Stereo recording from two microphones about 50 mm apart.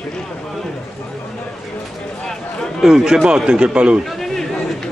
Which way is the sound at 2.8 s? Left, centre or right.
Centre.